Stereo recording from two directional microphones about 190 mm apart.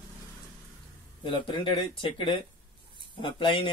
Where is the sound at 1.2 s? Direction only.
25° left (ahead or behind).